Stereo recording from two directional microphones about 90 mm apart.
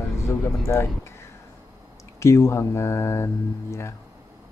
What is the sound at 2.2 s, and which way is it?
Speech, 35° left (ahead or behind).